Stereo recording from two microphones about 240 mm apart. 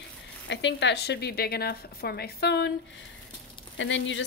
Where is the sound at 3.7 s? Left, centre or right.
Left.